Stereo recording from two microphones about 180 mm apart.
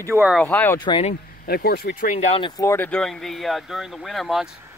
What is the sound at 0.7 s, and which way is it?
Speech, 30° left (ahead or behind).